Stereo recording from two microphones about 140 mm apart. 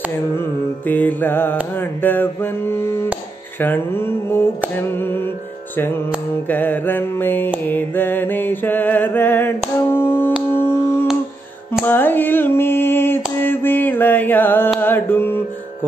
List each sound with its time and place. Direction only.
0.8 s mantra: 10° left (ahead or behind)
6.4 s mantra: 15° left (ahead or behind)
9.8 s music: 15° left (ahead or behind)
10.5 s a sound: 15° left (ahead or behind)
14.8 s mantra: 15° left (ahead or behind)